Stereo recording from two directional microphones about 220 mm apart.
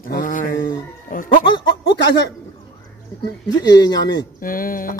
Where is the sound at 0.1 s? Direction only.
35° left (ahead or behind).